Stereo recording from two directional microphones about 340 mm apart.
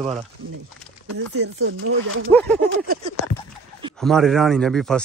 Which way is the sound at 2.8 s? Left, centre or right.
Right.